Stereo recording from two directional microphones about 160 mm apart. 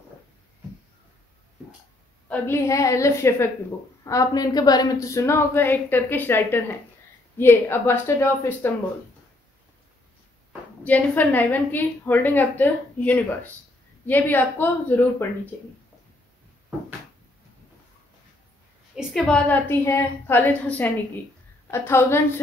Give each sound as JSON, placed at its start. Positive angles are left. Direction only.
{"t": 2.2, "sound": "a woman's voice", "side_deg": 10}
{"t": 10.8, "sound": "a woman's voice", "side_deg": 10}
{"t": 18.9, "sound": "a woman's voice", "side_deg": 0}